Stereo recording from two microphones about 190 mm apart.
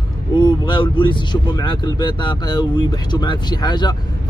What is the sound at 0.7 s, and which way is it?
Speech, 25° left (ahead or behind).